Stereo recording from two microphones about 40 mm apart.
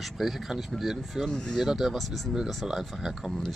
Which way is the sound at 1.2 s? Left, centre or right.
Left.